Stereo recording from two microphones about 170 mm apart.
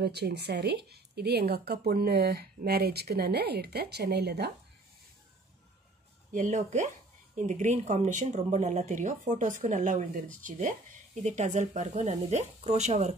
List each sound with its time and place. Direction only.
0.0 s speech: 75° right (ahead or behind)
6.3 s speech: 50° right (ahead or behind)